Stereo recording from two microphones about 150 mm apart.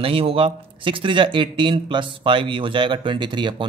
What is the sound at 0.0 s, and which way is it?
Speech, 40° right (ahead or behind).